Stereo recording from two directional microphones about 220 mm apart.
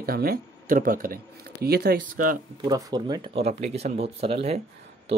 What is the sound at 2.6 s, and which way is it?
Speech, 20° right (ahead or behind).